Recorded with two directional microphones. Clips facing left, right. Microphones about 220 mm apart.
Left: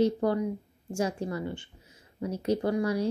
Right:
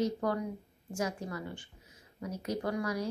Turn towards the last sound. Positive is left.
turn(degrees=30)  # may be behind; listen again after turning